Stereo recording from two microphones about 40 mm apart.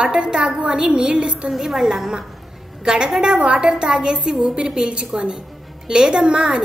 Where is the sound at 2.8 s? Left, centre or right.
Right.